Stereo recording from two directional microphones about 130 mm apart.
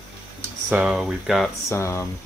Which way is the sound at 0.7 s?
5° right (ahead or behind).